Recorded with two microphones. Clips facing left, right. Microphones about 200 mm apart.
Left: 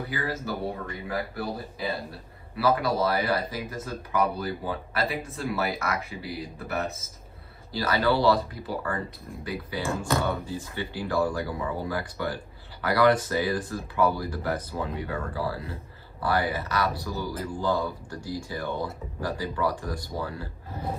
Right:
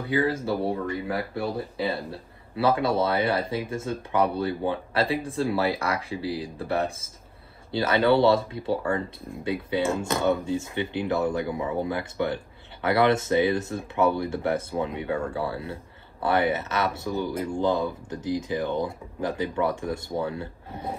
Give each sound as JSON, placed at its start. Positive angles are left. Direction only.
{"t": 0.1, "sound": "speech", "side_deg": -30}